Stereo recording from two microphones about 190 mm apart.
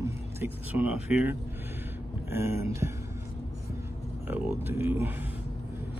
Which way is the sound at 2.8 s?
15° right (ahead or behind).